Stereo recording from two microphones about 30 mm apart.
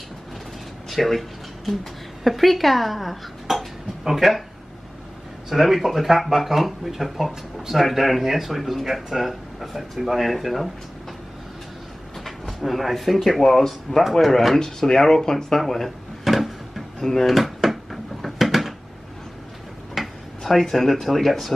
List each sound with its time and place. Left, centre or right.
0.8 s speech: centre
2.2 s speech: centre
5.5 s speech: centre
12.2 s speech: centre
14.6 s speech: centre
16.3 s a sound: centre
17.0 s speech: centre
17.4 s drawer open or close: centre
18.2 s a sound: centre
19.9 s a sound: centre
20.9 s speech: centre